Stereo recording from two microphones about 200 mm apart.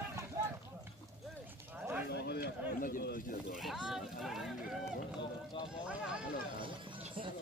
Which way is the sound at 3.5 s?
Centre (ahead or behind).